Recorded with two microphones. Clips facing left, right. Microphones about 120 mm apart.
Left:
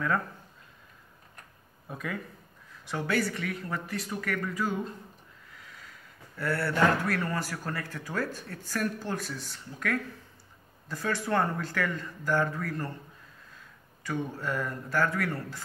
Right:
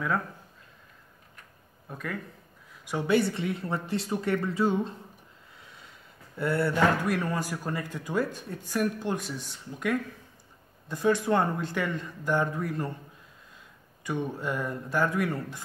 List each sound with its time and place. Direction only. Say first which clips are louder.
1.9 s speech: even; centre (ahead or behind)
2.8 s speech: right 4 dB; 15° right (ahead or behind)
14.0 s speech: right 2 dB; 15° right (ahead or behind)